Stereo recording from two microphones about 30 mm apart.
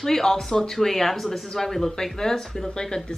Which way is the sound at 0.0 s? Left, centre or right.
Centre.